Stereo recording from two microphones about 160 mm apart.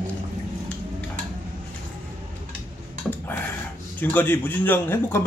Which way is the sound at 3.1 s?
10° left (ahead or behind).